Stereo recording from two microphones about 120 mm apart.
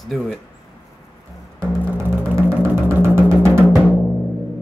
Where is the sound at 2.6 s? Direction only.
20° right (ahead or behind).